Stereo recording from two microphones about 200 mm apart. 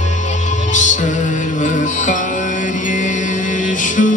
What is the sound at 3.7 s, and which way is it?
Music, 40° left (ahead or behind).